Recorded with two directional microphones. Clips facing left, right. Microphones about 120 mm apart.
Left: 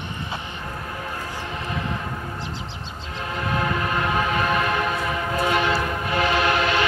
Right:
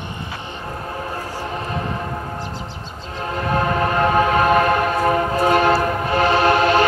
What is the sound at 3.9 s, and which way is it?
Train, 45° right (ahead or behind).